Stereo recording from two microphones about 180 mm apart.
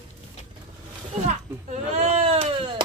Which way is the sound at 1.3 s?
40° right (ahead or behind).